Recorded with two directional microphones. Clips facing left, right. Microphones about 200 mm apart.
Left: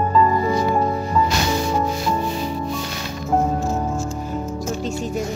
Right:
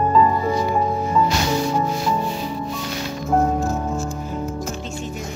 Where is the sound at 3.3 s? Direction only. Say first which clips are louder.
Right 1 dB; centre (ahead or behind).